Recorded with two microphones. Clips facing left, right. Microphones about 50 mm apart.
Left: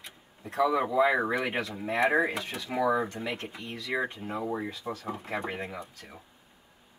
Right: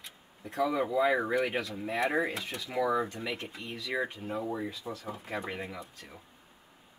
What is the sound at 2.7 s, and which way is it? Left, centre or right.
Speech, left.